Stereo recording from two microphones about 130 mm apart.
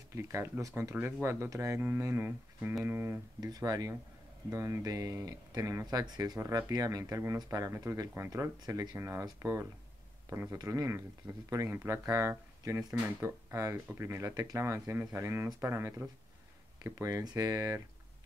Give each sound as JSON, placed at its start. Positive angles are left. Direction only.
{"t": 0.1, "sound": "speech", "side_deg": -20}
{"t": 3.3, "sound": "speech", "side_deg": -30}